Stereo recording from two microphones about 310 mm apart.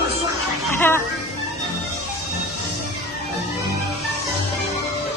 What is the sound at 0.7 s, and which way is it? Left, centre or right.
Speech, centre.